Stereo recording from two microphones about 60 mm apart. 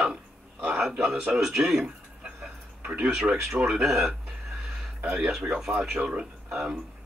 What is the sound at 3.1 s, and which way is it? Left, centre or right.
Speech, centre.